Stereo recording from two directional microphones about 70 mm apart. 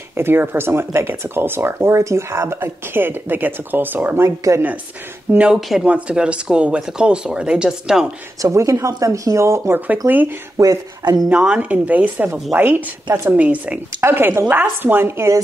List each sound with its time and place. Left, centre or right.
0.1 s speech: right
4.2 s speech: right
5.9 s speech: centre
8.4 s speech: right
9.8 s speech: right
10.6 s speech: right
11.3 s speech: centre
11.7 s speech: right
13.3 s speech: right
14.0 s speech: right